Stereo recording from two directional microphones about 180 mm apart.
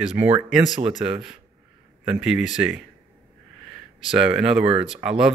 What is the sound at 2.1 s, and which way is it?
Speech, 5° right (ahead or behind).